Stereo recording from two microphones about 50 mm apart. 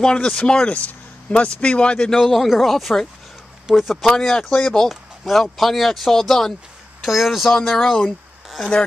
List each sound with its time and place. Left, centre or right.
0.0 s speech: centre
0.7 s speech: left
2.0 s speech: centre
4.2 s speech: centre